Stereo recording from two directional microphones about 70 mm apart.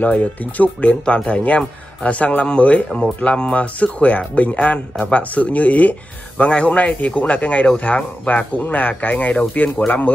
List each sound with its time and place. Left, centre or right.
0.0 s speech: left